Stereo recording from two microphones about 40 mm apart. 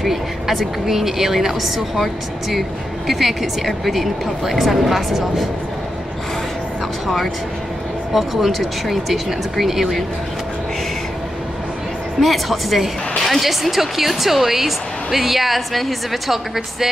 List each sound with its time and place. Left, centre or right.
0.0 s a woman's voice: centre
3.1 s a woman's voice: centre
8.1 s a woman's voice: centre
12.2 s a woman's voice: centre